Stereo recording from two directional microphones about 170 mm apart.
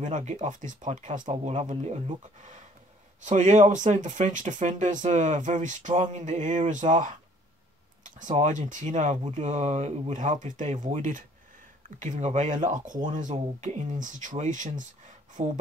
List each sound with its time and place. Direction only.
0.0 s speech: 45° right (ahead or behind)